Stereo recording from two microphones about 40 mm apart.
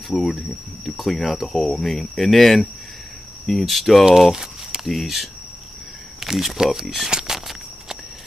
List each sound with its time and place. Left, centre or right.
0.1 s speech: centre
1.6 s speech: centre
4.0 s speech: centre
4.8 s speech: centre
7.1 s a sound: right
7.3 s a sound: centre